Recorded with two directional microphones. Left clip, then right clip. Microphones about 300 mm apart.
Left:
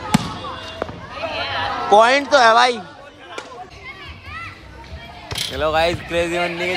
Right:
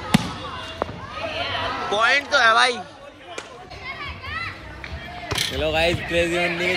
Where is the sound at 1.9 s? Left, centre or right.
Left.